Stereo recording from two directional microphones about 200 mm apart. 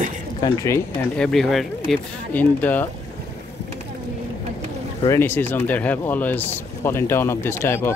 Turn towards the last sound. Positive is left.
turn(degrees=10)  # may be behind; listen again after turning